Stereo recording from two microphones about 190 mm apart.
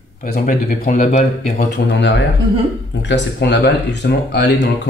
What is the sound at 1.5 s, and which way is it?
Speech, 65° left (ahead or behind).